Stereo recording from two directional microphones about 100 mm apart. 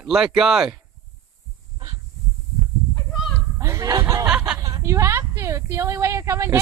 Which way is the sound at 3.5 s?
30° right (ahead or behind).